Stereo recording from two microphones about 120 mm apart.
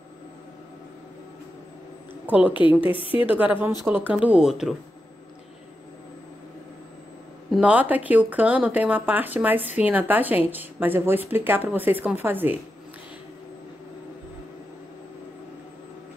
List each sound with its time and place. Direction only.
2.2 s a woman's voice: 10° right (ahead or behind)
2.8 s a woman's voice: 45° left (ahead or behind)
3.3 s a woman's voice: 10° right (ahead or behind)
7.6 s a woman's voice: 15° right (ahead or behind)